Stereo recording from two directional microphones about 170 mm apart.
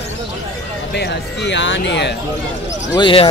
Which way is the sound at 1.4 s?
90° left.